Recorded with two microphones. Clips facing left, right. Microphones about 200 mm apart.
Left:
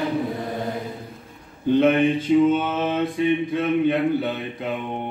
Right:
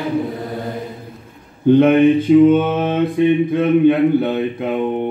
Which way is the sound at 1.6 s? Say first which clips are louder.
Right 7 dB; 55° right (ahead or behind).